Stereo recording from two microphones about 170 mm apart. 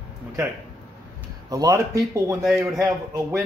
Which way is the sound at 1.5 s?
20° right (ahead or behind).